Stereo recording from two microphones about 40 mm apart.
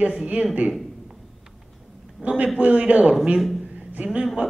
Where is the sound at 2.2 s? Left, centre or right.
Right.